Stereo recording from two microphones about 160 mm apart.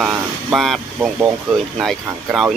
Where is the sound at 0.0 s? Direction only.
5° right (ahead or behind).